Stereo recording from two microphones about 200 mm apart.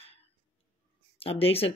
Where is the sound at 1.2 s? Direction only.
30° left (ahead or behind).